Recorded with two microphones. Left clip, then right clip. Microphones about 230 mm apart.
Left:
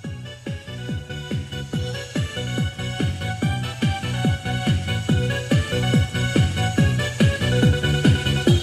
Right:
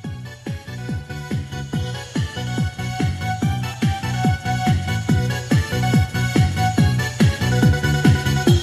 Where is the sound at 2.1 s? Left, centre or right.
Right.